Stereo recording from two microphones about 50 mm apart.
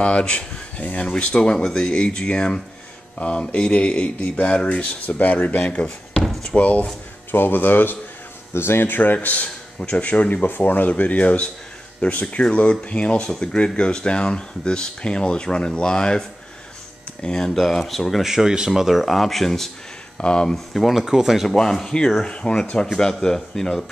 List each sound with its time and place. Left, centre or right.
0.0 s speech: centre
7.2 s a man's voice: left
8.5 s a man's voice: left; by 17.5 s centre
17.6 s speech: centre
18.2 s speech: centre
20.2 s speech: centre
20.5 s speech: centre
21.0 s speech: centre
21.5 s speech: centre